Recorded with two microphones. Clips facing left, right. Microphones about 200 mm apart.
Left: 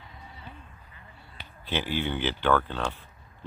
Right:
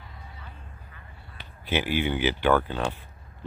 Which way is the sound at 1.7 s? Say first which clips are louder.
Right 3 dB; 15° right (ahead or behind).